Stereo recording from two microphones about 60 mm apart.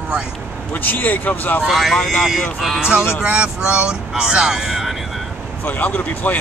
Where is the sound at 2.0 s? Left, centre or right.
Centre.